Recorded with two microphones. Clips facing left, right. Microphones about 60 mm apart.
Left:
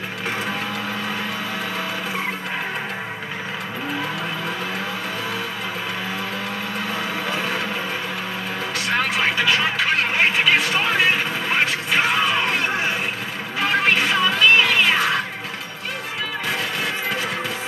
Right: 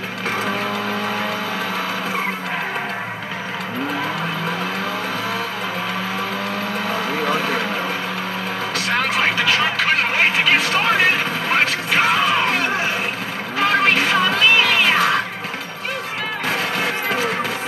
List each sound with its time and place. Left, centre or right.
9.2 s vehicle: right
10.5 s a sound: right
13.6 s music: right
16.4 s music: right